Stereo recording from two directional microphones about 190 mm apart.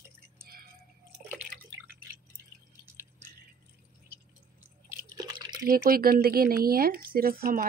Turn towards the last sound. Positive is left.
turn(degrees=-50)  # may be behind; listen again after turning